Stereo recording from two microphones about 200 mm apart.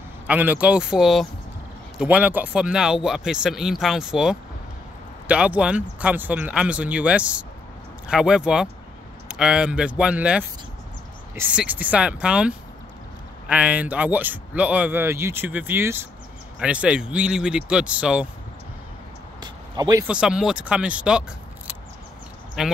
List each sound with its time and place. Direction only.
0.3 s speech: 10° right (ahead or behind)
19.4 s a sound: 20° right (ahead or behind)
20.1 s speech: 5° right (ahead or behind)
22.6 s speech: 5° right (ahead or behind)